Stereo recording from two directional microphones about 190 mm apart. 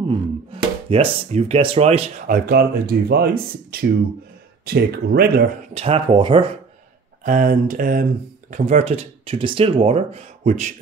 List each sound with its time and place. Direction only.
0.1 s speech: 30° right (ahead or behind)
2.5 s speech: 55° right (ahead or behind)
4.6 s speech: 55° right (ahead or behind)
5.8 s speech: 30° right (ahead or behind)
7.2 s speech: 45° right (ahead or behind)